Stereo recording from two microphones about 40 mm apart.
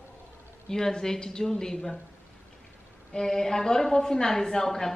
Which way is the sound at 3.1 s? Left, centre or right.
Centre.